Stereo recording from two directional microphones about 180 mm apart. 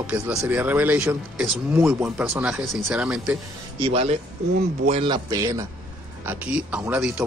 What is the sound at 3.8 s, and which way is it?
Speech, 35° right (ahead or behind).